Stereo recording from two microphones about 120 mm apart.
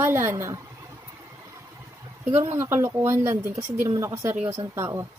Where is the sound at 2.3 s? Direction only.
20° right (ahead or behind).